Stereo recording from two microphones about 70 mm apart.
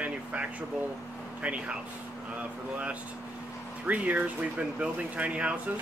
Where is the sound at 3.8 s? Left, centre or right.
Centre.